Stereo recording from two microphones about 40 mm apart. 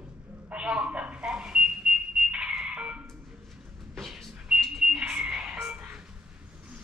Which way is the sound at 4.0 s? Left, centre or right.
Centre.